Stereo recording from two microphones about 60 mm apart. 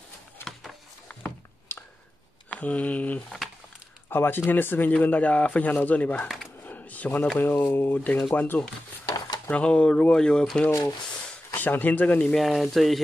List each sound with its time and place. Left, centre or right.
1.0 s a sound: left
2.5 s speech: left
4.1 s speech: left
6.2 s a sound: centre
6.6 s a sound: left
7.3 s speech: left
9.5 s speech: centre
10.7 s speech: left
11.5 s speech: left
12.4 s speech: centre